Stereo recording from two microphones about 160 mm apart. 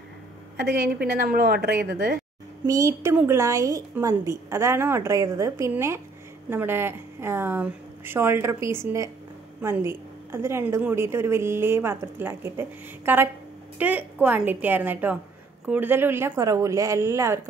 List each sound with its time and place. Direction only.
0.9 s speech: 80° right
2.6 s a woman's voice: 20° right (ahead or behind)